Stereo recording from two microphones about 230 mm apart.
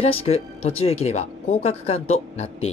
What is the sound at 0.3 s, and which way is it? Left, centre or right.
Speech, left.